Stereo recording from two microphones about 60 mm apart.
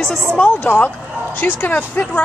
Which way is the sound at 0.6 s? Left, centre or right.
Left.